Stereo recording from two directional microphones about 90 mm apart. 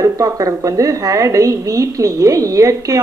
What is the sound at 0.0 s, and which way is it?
Speech, 40° right (ahead or behind).